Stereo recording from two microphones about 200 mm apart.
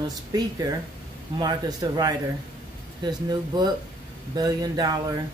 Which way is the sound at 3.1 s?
20° right (ahead or behind).